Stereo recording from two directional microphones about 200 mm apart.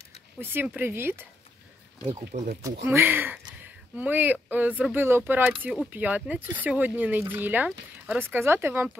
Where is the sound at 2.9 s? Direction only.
10° right (ahead or behind).